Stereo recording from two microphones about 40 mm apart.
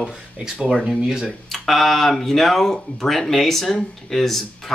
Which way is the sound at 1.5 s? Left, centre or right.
Centre.